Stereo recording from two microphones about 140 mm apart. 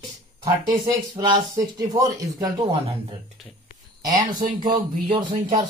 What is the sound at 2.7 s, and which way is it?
Speech, 40° right (ahead or behind).